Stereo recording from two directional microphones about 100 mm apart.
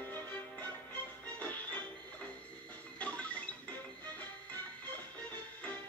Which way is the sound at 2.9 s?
15° left (ahead or behind).